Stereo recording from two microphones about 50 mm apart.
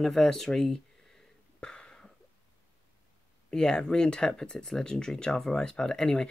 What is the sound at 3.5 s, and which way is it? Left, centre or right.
Speech, centre.